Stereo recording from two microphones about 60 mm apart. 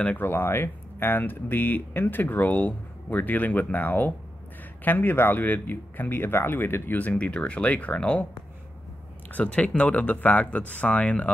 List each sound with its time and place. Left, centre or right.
0.2 s speech: left
7.0 s speech: left
9.3 s speech: left